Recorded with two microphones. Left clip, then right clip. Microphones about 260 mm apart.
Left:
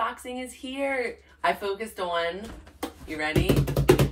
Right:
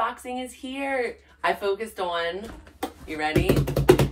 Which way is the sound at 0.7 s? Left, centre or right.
Centre.